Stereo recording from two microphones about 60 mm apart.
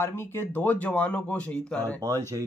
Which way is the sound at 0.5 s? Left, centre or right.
Left.